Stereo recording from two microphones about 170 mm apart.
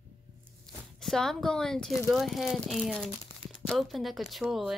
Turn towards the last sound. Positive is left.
turn(degrees=0)  # may be behind; listen again after turning